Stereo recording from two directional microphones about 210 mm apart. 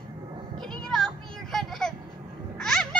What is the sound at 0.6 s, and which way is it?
Children playing, centre (ahead or behind).